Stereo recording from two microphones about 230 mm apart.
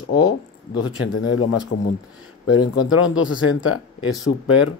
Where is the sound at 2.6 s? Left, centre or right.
Left.